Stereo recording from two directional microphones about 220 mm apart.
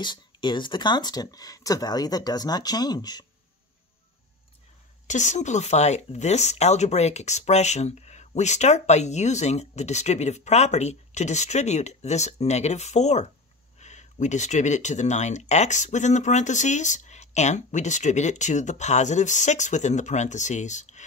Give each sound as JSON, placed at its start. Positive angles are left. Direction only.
{"t": 0.0, "sound": "speech", "side_deg": 20}
{"t": 5.0, "sound": "speech", "side_deg": 35}